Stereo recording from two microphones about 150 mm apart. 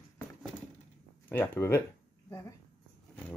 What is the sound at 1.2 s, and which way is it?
Speech, 15° left (ahead or behind).